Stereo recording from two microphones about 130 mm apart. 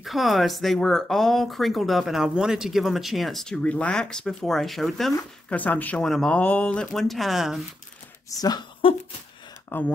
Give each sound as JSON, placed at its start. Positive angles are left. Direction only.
{"t": 0.0, "sound": "speech", "side_deg": 0}
{"t": 5.5, "sound": "speech", "side_deg": 10}
{"t": 8.3, "sound": "a woman's voice", "side_deg": 30}
{"t": 9.7, "sound": "speech", "side_deg": 15}